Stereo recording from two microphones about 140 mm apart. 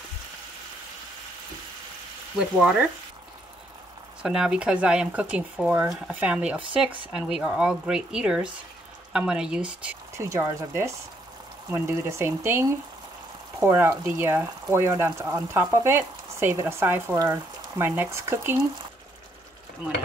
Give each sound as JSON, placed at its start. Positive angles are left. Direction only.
{"t": 2.3, "sound": "speech", "side_deg": -5}
{"t": 4.2, "sound": "speech", "side_deg": -5}
{"t": 10.1, "sound": "speech", "side_deg": -20}